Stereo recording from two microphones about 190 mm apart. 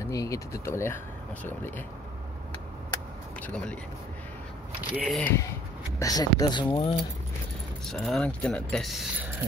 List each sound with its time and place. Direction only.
0.0 s speech: 15° left (ahead or behind)
3.4 s speech: 10° left (ahead or behind)
4.9 s speech: 5° left (ahead or behind)
5.9 s speech: 20° left (ahead or behind)
7.9 s speech: centre (ahead or behind)